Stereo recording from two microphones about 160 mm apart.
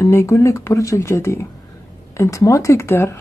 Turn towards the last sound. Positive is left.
turn(degrees=15)  # may be behind; listen again after turning